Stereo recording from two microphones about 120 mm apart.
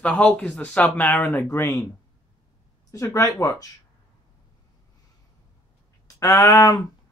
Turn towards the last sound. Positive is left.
turn(degrees=30)  # may be behind; listen again after turning